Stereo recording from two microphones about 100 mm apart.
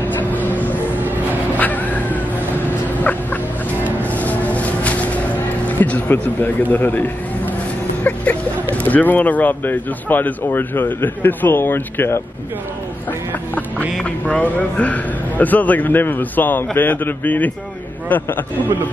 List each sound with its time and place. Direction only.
0.5 s vehicle: 15° left (ahead or behind)
1.6 s cat: 15° left (ahead or behind)
4.0 s music: 15° left (ahead or behind)
5.7 s a man's voice: 15° left (ahead or behind)
13.9 s a man's voice: 10° left (ahead or behind)